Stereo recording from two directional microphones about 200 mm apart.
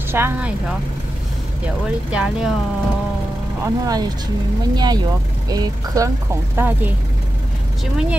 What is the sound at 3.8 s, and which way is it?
Speech, 20° right (ahead or behind).